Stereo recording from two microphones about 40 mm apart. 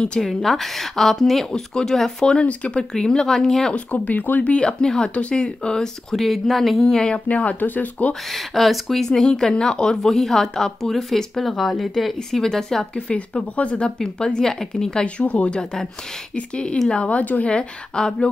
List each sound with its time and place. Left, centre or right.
0.2 s a woman's voice: centre
2.2 s speech: left
2.8 s a woman's voice: centre
3.7 s speech: left
4.5 s speech: left
6.1 s a woman's voice: centre
7.2 s speech: left
8.1 s a woman's voice: centre
9.5 s a woman's voice: centre
12.9 s speech: left
13.9 s a woman's voice: centre
15.1 s speech: left
17.2 s speech: left
17.5 s speech: left